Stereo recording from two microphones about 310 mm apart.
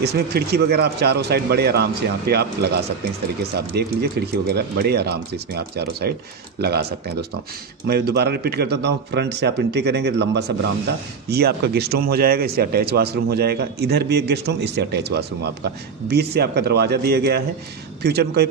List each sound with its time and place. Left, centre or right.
0.0 s speech: right